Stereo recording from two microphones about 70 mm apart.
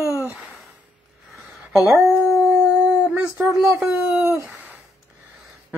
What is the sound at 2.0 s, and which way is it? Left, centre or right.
Howl, centre.